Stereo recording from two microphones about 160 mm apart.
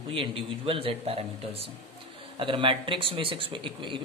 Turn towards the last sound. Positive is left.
turn(degrees=-35)  # may be behind; listen again after turning